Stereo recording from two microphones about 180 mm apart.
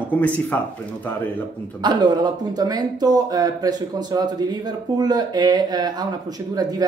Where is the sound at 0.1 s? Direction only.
10° left (ahead or behind).